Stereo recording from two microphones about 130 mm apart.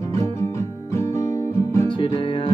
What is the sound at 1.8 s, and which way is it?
Music, 40° left (ahead or behind).